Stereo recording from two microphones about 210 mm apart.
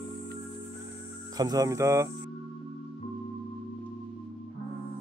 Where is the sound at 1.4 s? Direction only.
15° right (ahead or behind).